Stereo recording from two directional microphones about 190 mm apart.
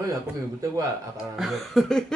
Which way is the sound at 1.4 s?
Centre (ahead or behind).